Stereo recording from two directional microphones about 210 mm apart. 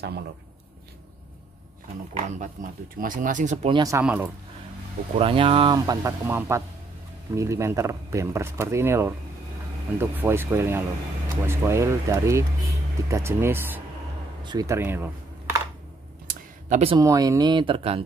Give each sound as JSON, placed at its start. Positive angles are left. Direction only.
{"t": 2.1, "sound": "speech", "side_deg": -35}
{"t": 3.7, "sound": "speech", "side_deg": -15}
{"t": 5.1, "sound": "speech", "side_deg": -25}
{"t": 14.4, "sound": "a sound", "side_deg": -20}
{"t": 16.6, "sound": "speech", "side_deg": -30}
{"t": 17.0, "sound": "speech", "side_deg": -15}